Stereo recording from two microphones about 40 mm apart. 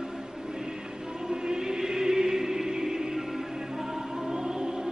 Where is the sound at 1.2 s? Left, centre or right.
Centre.